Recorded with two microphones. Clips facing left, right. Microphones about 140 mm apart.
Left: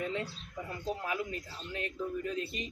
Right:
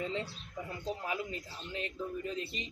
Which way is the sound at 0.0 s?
25° right (ahead or behind).